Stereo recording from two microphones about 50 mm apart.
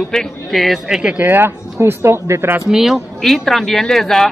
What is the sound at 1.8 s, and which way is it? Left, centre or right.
Speech, right.